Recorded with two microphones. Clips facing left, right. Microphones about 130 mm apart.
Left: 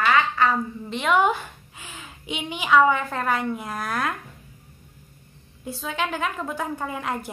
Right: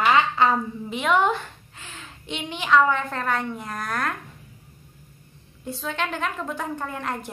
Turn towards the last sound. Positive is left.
turn(degrees=5)  # may be behind; listen again after turning